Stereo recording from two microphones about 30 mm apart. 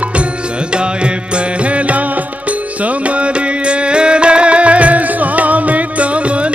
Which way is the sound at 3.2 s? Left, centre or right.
Right.